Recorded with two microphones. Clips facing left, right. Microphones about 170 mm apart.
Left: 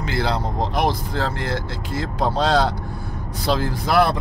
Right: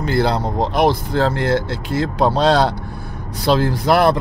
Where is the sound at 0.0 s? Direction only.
55° right (ahead or behind).